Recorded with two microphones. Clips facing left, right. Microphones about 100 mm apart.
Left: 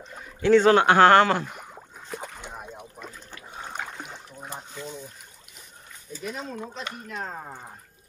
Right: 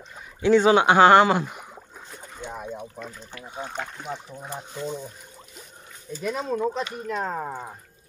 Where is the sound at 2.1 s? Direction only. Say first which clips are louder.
Left 10 dB; 90° left.